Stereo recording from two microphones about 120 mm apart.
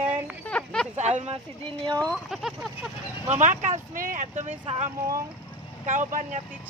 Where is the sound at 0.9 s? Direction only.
70° right (ahead or behind).